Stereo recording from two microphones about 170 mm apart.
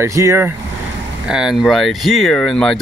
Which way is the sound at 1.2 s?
5° right (ahead or behind).